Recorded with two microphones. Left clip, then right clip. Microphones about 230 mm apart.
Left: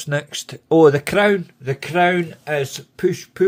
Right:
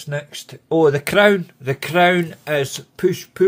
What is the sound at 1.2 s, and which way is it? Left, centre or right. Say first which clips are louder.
Speech: right 2 dB; centre.